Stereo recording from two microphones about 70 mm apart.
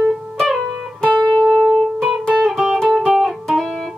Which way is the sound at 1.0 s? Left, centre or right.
Centre.